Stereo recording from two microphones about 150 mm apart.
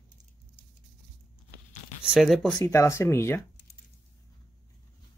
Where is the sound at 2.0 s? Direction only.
5° right (ahead or behind).